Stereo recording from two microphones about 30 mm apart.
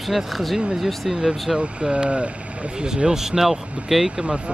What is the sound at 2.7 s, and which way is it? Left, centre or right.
Speech, right.